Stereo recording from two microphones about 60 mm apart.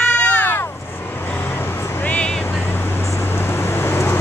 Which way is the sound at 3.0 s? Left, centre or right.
Left.